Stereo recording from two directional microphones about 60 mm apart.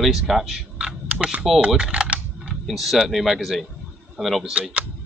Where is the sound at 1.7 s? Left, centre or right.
Centre.